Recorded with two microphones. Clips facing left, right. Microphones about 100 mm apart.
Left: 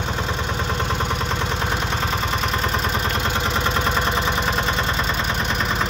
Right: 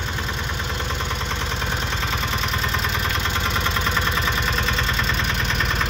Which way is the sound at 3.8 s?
30° left (ahead or behind).